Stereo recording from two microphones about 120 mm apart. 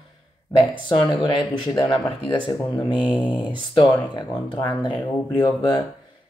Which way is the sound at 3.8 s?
40° left (ahead or behind).